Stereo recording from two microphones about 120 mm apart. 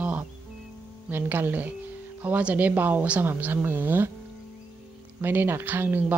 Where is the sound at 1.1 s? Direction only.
15° right (ahead or behind).